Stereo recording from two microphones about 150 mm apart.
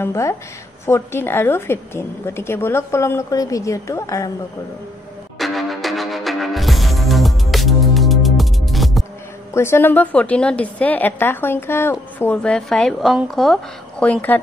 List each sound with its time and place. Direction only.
0.0 s a woman's voice: 20° left (ahead or behind)
5.4 s music: centre (ahead or behind)
9.5 s a woman's voice: 15° left (ahead or behind)